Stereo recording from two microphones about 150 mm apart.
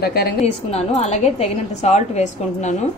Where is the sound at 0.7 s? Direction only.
45° left (ahead or behind).